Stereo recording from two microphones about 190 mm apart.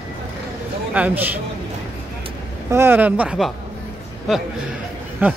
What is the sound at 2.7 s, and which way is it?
Speech, 10° right (ahead or behind).